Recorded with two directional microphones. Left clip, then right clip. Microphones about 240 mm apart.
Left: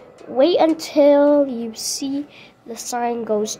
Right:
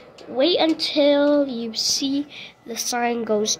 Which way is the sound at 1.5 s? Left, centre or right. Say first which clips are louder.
Right 3 dB; left.